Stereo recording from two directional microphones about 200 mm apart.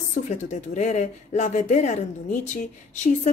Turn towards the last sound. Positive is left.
turn(degrees=40)  # may be behind; listen again after turning